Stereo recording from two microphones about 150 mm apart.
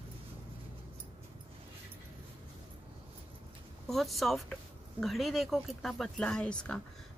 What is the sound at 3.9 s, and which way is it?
Speech, centre (ahead or behind).